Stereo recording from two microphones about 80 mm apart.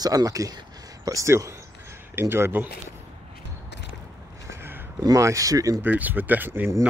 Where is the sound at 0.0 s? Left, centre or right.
Right.